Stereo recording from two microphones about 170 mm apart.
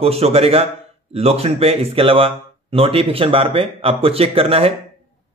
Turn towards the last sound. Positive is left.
turn(degrees=-35)  # may be behind; listen again after turning